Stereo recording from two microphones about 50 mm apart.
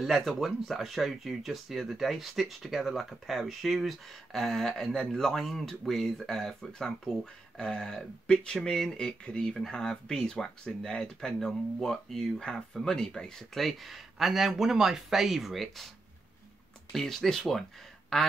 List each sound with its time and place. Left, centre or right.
0.0 s speech: centre
16.9 s speech: centre